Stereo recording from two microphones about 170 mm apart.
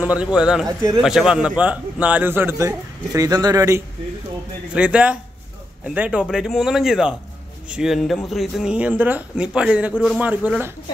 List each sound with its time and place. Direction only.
0.0 s a man's voice: 5° right (ahead or behind)
0.7 s speech: 20° right (ahead or behind)
1.0 s a man's voice: 5° right (ahead or behind); by 3.8 s 20° right (ahead or behind)
4.7 s a man's voice: 5° right (ahead or behind)